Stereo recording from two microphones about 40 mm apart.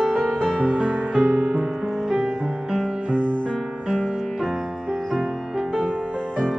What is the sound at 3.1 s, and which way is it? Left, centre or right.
Music, left.